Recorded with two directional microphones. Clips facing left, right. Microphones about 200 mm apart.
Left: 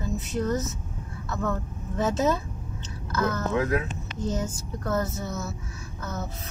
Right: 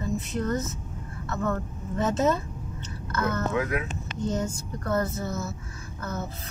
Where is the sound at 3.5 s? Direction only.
35° left (ahead or behind).